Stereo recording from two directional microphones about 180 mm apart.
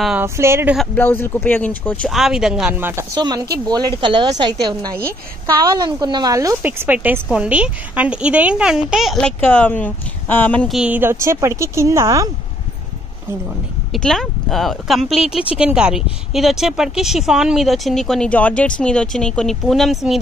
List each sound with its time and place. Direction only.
0.0 s a woman's voice: 10° right (ahead or behind)
0.7 s a woman's voice: 10° left (ahead or behind)
10.8 s a woman's voice: 10° right (ahead or behind)
13.9 s a woman's voice: 5° left (ahead or behind)